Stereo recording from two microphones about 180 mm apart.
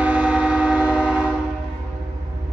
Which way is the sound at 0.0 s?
5° right (ahead or behind).